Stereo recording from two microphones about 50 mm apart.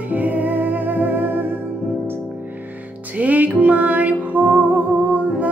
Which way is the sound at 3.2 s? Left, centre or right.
Right.